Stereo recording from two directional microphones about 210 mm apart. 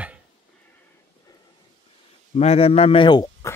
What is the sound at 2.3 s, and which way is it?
Speech, 30° left (ahead or behind).